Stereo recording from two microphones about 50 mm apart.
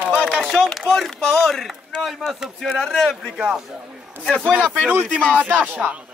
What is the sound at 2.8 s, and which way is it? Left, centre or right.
Speech, centre.